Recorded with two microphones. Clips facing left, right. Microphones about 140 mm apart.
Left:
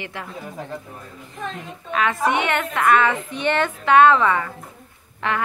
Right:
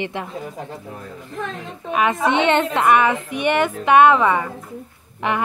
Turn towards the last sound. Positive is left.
turn(degrees=-15)  # may be behind; listen again after turning